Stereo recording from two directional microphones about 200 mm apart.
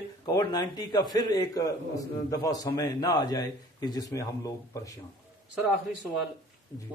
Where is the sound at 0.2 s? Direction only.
20° left (ahead or behind).